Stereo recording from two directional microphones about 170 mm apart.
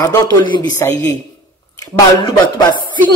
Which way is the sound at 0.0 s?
20° left (ahead or behind).